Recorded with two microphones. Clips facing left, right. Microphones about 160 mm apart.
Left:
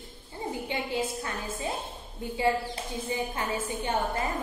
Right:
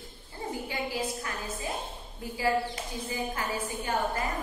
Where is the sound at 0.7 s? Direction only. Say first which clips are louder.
Left 3 dB; 25° left (ahead or behind).